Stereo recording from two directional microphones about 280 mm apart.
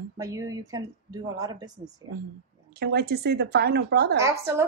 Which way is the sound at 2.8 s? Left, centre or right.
Right.